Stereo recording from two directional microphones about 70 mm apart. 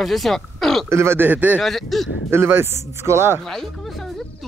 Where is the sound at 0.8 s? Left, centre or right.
Right.